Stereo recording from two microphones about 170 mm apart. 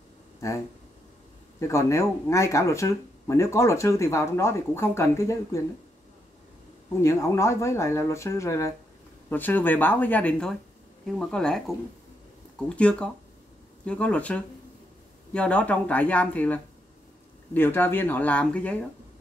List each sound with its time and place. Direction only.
1.6 s speech: 15° left (ahead or behind)
7.0 s speech: 15° left (ahead or behind)